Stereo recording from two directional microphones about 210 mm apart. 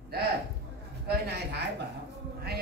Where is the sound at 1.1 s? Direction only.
50° right (ahead or behind).